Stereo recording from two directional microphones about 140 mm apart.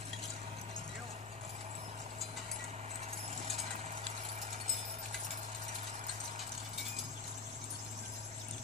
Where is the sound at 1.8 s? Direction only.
55° right (ahead or behind).